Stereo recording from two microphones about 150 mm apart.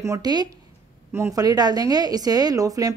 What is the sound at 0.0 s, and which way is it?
A woman's voice, 25° right (ahead or behind).